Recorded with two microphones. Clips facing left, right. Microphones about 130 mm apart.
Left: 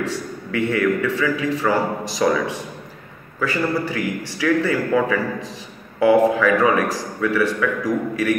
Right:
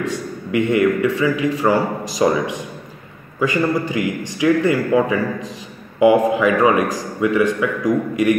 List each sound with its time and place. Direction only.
0.0 s a man's voice: 15° right (ahead or behind)